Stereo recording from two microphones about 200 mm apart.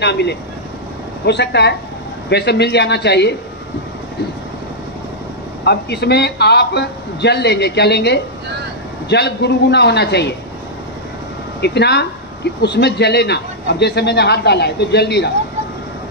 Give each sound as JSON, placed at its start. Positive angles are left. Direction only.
{"t": 0.0, "sound": "speech", "side_deg": 55}
{"t": 5.6, "sound": "speech", "side_deg": 55}
{"t": 11.6, "sound": "speech", "side_deg": 55}